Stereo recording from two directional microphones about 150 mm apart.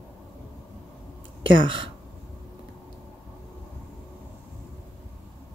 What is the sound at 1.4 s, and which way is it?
Speech, 35° right (ahead or behind).